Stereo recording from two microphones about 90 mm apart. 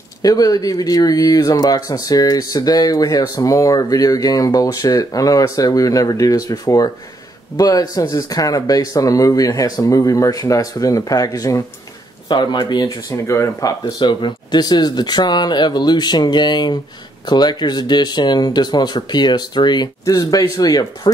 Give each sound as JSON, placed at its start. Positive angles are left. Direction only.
{"t": 0.2, "sound": "speech", "side_deg": 45}
{"t": 12.3, "sound": "speech", "side_deg": 60}
{"t": 12.8, "sound": "speech", "side_deg": 35}
{"t": 13.9, "sound": "speech", "side_deg": 55}